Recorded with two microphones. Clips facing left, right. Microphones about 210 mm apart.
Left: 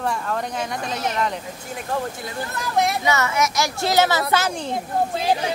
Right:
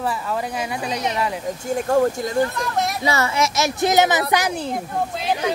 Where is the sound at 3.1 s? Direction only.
30° right (ahead or behind); by 4.6 s 15° right (ahead or behind).